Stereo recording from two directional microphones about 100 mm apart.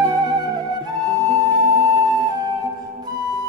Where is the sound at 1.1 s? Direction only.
40° right (ahead or behind).